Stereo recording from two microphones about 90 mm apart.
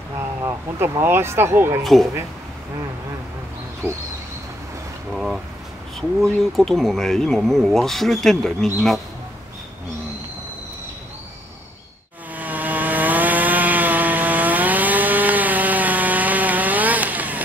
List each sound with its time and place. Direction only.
0.4 s speech: 30° right (ahead or behind)
1.8 s speech: centre (ahead or behind)
5.1 s speech: centre (ahead or behind)
12.4 s chainsaw: 20° right (ahead or behind)